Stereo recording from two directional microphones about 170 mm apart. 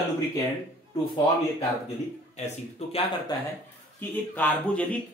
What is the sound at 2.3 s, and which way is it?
Speech, 40° left (ahead or behind).